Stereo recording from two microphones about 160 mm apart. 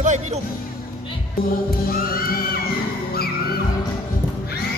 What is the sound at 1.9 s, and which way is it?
Music, 65° left (ahead or behind).